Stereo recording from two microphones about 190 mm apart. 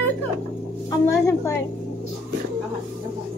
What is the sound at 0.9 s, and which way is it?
Speech, 15° left (ahead or behind).